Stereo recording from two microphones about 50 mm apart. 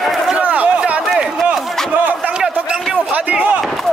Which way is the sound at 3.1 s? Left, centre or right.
Right.